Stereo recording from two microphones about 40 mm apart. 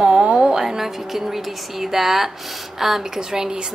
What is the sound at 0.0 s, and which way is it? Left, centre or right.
A woman's voice, right.